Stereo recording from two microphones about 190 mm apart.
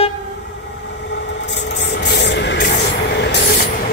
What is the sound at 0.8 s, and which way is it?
Vehicle, 65° left (ahead or behind).